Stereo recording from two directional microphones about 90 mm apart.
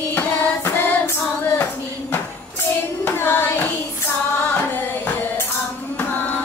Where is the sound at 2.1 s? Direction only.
20° left (ahead or behind).